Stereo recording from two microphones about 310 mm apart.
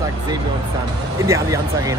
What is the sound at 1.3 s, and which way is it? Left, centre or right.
Speech, centre.